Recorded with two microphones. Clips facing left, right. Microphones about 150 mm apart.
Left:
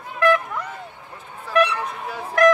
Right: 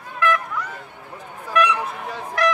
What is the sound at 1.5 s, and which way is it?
Honk, 30° left (ahead or behind).